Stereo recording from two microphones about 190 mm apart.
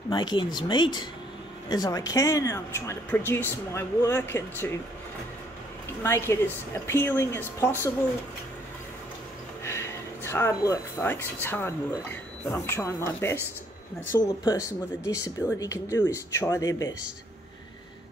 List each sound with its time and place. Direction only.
0.1 s speech: 25° left (ahead or behind)
6.0 s speech: 15° left (ahead or behind)
9.7 s a sound: 15° left (ahead or behind)
11.4 s speech: 10° left (ahead or behind)
14.4 s speech: 20° left (ahead or behind)